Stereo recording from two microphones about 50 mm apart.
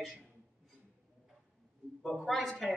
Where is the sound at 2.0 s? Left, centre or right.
Centre.